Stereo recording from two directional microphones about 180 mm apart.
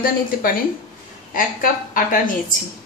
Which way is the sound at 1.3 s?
50° left (ahead or behind).